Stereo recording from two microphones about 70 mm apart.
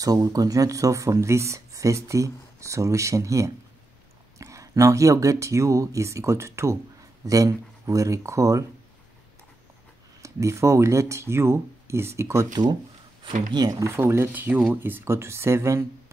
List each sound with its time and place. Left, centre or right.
0.0 s speech: right
7.2 s speech: right
10.2 s speech: right
13.5 s speech: right
13.8 s speech: right